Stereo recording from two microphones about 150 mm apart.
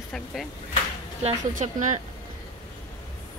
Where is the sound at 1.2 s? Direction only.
55° right (ahead or behind).